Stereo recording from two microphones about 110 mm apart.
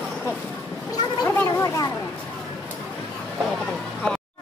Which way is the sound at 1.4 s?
25° left (ahead or behind).